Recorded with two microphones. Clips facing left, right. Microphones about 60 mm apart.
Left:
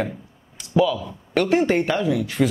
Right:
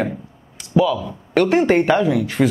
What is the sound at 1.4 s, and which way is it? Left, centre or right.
Speech, right.